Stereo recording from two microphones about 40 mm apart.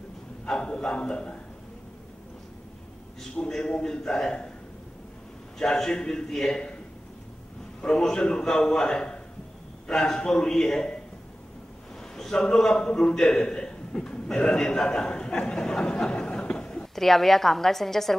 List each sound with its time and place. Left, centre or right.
0.5 s a man's voice: centre
3.2 s a man's voice: centre
5.6 s a man's voice: centre
7.8 s a man's voice: centre
12.3 s a man's voice: centre
16.1 s a sound: left
16.9 s a woman's voice: centre